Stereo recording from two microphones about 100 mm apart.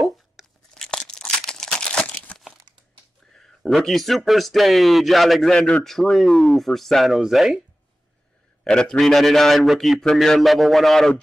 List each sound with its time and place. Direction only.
0.4 s crunch: 5° right (ahead or behind)
0.8 s crumpling: 5° left (ahead or behind)
3.3 s a man's voice: 5° left (ahead or behind)
8.6 s a man's voice: 5° left (ahead or behind)